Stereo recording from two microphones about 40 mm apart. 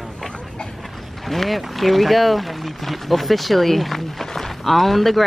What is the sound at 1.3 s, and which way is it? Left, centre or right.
Speech, centre.